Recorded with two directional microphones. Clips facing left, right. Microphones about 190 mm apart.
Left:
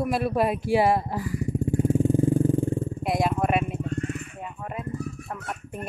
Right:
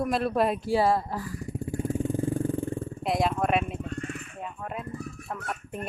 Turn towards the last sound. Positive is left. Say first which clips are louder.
# even
turn(degrees=0)  # may be behind; listen again after turning